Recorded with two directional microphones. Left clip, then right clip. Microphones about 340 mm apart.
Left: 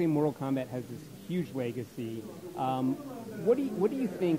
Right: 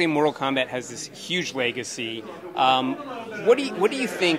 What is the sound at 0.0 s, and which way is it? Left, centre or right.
Speech, centre.